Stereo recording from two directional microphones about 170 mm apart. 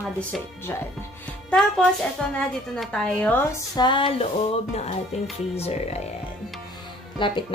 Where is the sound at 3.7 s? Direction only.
30° left (ahead or behind).